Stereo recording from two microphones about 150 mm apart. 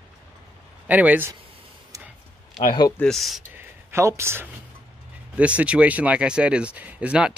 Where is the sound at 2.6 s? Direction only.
25° left (ahead or behind).